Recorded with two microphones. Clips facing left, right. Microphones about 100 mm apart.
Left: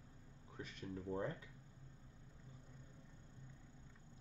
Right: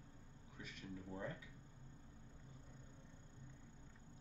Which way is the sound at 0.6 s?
40° left (ahead or behind).